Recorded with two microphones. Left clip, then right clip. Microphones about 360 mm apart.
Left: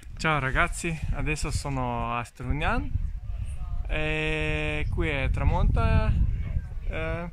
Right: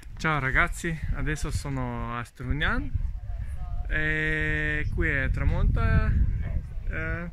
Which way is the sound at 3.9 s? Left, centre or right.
Centre.